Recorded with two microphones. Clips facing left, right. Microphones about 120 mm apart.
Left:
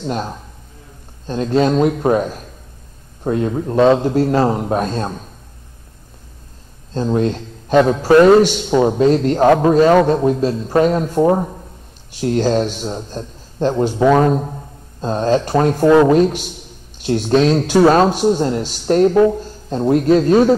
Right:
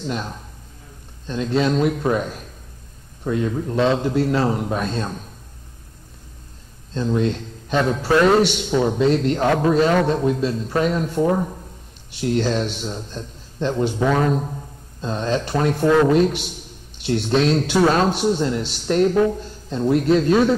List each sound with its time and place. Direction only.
0.0 s a man's voice: 40° left (ahead or behind)
6.9 s a man's voice: 45° left (ahead or behind)